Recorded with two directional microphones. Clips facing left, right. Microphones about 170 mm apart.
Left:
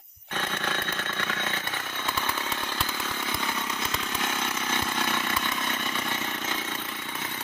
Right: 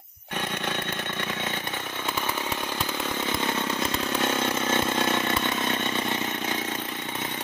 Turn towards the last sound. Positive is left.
turn(degrees=-20)  # may be behind; listen again after turning